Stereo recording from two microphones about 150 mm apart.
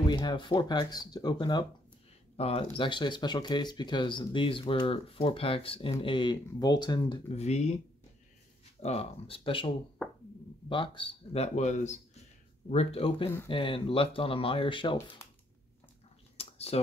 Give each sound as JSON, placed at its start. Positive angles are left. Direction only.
{"t": 0.1, "sound": "speech", "side_deg": 30}
{"t": 2.3, "sound": "speech", "side_deg": 40}
{"t": 7.2, "sound": "speech", "side_deg": 45}
{"t": 8.8, "sound": "speech", "side_deg": 40}
{"t": 12.6, "sound": "speech", "side_deg": 40}
{"t": 16.3, "sound": "a sound", "side_deg": 45}